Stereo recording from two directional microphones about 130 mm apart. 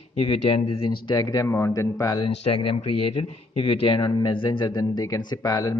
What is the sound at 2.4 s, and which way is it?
Speech, 45° left (ahead or behind).